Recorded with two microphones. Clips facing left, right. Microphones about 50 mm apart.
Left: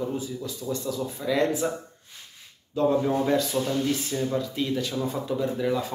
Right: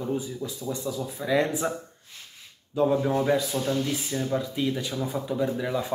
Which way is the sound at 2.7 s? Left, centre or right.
Centre.